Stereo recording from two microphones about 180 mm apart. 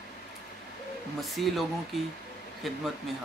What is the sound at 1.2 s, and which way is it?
Speech, centre (ahead or behind).